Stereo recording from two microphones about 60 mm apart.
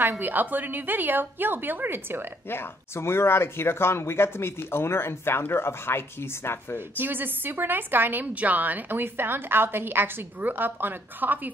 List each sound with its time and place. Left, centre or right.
0.0 s a woman's voice: right
2.5 s speech: left
7.0 s a woman's voice: right